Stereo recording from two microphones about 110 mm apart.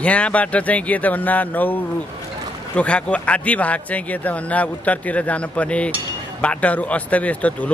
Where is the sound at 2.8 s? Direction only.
10° left (ahead or behind).